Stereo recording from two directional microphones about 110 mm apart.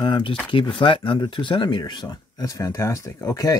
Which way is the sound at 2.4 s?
25° left (ahead or behind).